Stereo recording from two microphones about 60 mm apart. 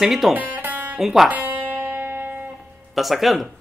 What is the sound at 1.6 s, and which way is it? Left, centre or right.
Music, right.